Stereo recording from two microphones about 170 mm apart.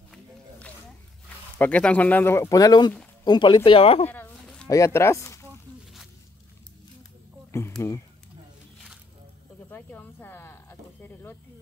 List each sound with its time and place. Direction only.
1.6 s speech: 10° left (ahead or behind); by 4.1 s 35° left (ahead or behind)
4.1 s a sound: 5° left (ahead or behind)
4.6 s speech: 20° left (ahead or behind)
7.8 s speech: 15° left (ahead or behind)
9.7 s snake: 10° left (ahead or behind)